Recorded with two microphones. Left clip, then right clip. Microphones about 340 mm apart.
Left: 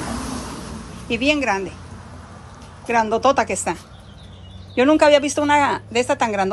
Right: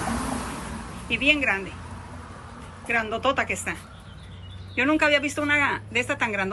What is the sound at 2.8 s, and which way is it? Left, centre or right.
Speech, centre.